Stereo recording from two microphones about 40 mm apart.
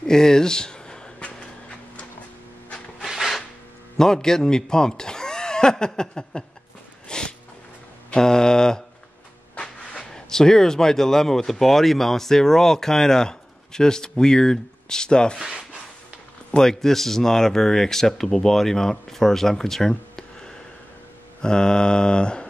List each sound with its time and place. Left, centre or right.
0.0 s a sound: centre
3.0 s a sound: centre
4.0 s speech: centre
7.1 s snort: left
8.2 s speech: centre
16.5 s speech: centre
21.4 s mantra: centre